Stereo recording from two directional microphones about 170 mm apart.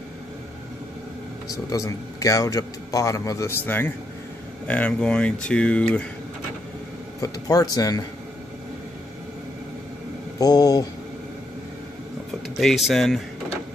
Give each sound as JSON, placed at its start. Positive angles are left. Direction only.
{"t": 1.7, "sound": "a man's voice", "side_deg": 20}
{"t": 7.2, "sound": "a man's voice", "side_deg": 20}
{"t": 10.4, "sound": "a man's voice", "side_deg": 20}
{"t": 12.5, "sound": "speech", "side_deg": 0}